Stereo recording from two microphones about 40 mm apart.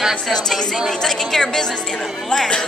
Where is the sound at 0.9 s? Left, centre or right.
Centre.